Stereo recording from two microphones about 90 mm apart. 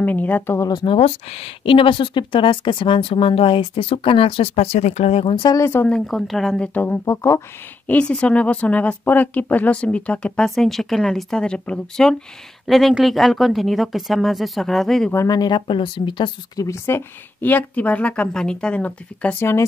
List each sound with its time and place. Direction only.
0.0 s speech: 20° left (ahead or behind)
0.8 s speech: 90° left
5.2 s speech: 55° left (ahead or behind)
5.6 s speech: 25° left (ahead or behind)
5.9 s speech: 5° left (ahead or behind)
6.7 s speech: 20° left (ahead or behind)
7.1 s speech: 35° left (ahead or behind)
7.8 s speech: 15° left (ahead or behind)
15.2 s speech: 50° left (ahead or behind)
15.6 s speech: 65° left (ahead or behind)
16.5 s speech: 35° left (ahead or behind); by 19.3 s 15° left (ahead or behind)